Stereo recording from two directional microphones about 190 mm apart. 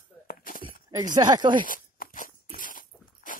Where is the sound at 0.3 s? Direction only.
45° left (ahead or behind).